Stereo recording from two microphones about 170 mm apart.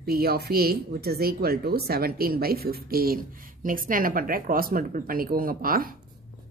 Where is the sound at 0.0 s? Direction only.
65° right (ahead or behind).